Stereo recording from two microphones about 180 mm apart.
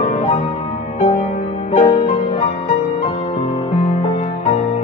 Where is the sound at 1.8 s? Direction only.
25° left (ahead or behind).